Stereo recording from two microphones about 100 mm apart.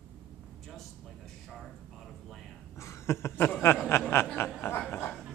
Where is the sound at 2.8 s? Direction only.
25° left (ahead or behind).